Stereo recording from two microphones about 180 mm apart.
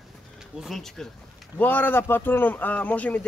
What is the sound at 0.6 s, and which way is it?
Speech, centre (ahead or behind).